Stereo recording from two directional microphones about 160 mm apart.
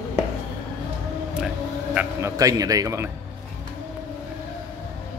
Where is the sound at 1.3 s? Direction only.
5° right (ahead or behind).